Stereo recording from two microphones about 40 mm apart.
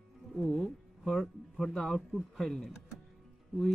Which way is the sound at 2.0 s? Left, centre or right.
Centre.